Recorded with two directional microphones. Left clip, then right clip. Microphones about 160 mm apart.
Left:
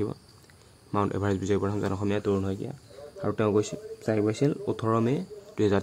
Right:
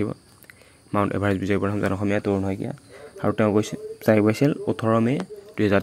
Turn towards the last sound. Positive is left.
turn(degrees=-10)  # may be behind; listen again after turning